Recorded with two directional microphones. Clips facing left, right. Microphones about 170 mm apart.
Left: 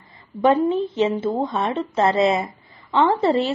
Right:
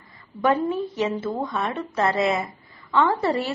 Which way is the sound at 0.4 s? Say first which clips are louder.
Left 4 dB; 20° left (ahead or behind).